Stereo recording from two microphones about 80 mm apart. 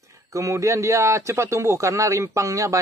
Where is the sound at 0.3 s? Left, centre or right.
Right.